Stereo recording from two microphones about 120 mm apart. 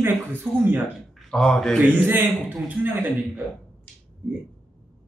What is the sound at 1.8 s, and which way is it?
Speech, 15° right (ahead or behind).